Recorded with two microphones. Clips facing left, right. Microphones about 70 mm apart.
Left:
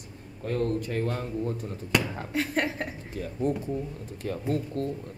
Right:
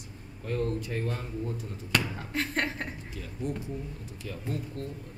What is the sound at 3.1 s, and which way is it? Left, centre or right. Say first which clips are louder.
A man's voice: left 10 dB; left.